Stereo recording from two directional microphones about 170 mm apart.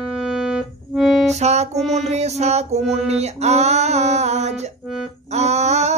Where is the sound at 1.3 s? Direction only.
40° right (ahead or behind).